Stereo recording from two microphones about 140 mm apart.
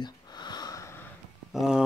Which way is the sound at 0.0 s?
30° left (ahead or behind).